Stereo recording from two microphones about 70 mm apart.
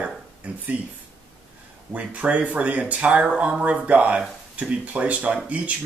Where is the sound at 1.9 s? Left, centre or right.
Right.